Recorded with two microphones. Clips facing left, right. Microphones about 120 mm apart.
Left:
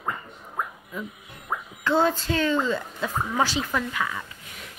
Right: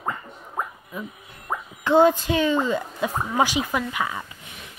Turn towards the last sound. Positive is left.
turn(degrees=-20)  # may be behind; listen again after turning